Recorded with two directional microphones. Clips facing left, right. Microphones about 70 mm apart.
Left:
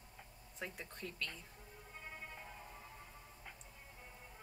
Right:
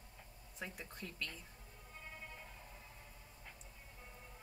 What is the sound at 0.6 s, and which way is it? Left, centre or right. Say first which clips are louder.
Speech: left 1 dB; centre.